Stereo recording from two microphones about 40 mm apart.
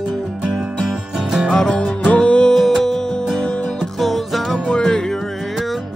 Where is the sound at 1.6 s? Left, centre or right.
Centre.